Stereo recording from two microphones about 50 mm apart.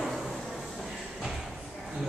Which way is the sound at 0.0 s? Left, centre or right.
Centre.